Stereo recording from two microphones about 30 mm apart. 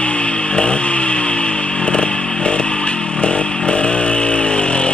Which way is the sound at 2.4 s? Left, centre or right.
Left.